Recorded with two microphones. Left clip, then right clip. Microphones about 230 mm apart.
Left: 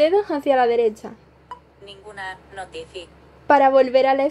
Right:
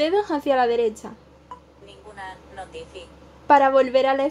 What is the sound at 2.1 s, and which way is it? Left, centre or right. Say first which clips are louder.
Speech: left 4 dB; left.